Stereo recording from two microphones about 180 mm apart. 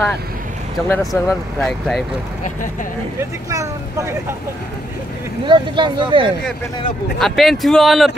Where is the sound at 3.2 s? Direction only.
15° right (ahead or behind).